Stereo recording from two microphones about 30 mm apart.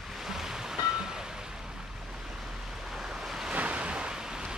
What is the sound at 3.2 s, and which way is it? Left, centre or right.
Waves, centre.